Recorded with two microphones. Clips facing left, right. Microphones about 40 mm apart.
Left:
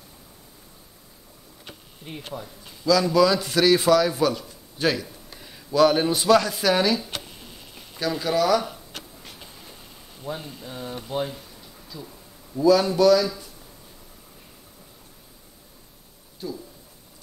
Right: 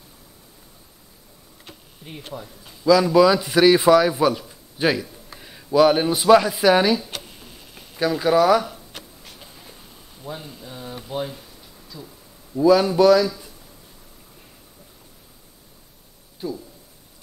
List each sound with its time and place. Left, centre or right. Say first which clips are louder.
1.7 s a sound: left 1 dB; centre
2.8 s a man's voice: right 4 dB; centre
7.0 s speech: even; centre
8.6 s writing: even; centre
10.2 s speech: left 1 dB; centre
12.5 s a man's voice: right 3 dB; centre
16.4 s a sound: right 4 dB; centre